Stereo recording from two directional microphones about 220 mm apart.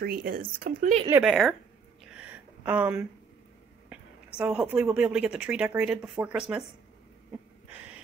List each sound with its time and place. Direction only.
0.0 s speech: 40° right (ahead or behind)
1.2 s a woman's voice: centre (ahead or behind)
2.6 s a woman's voice: 5° right (ahead or behind)